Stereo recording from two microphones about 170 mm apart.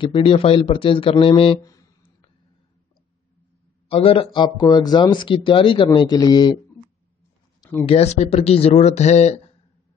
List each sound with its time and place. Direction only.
0.0 s speech: 30° left (ahead or behind)
1.6 s a sound: 20° left (ahead or behind)
3.9 s speech: 35° left (ahead or behind)
7.8 s speech: 35° left (ahead or behind)